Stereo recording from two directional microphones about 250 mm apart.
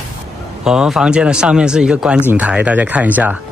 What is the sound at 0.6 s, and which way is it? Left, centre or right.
Speech, centre.